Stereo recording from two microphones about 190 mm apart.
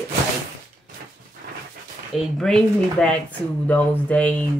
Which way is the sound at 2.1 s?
Centre (ahead or behind).